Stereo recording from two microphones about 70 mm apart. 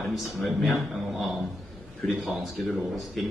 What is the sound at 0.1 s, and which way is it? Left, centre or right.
A man's voice, centre.